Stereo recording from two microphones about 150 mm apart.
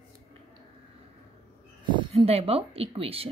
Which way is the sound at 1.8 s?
30° right (ahead or behind).